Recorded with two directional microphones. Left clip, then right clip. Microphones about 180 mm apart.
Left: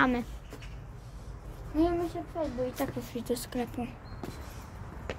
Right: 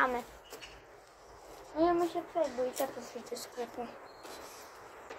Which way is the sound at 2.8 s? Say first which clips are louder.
Left 2 dB; 50° left (ahead or behind).